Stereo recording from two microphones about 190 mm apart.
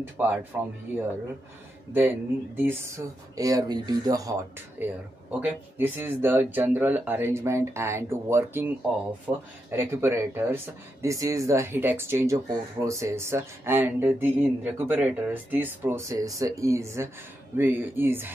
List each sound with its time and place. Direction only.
0.2 s speech: 10° right (ahead or behind)
1.9 s speech: 10° right (ahead or behind)